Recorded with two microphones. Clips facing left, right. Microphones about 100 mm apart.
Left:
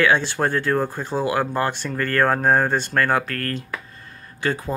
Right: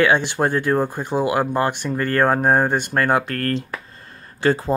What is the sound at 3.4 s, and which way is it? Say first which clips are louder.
Speech: right 4 dB; 35° right (ahead or behind).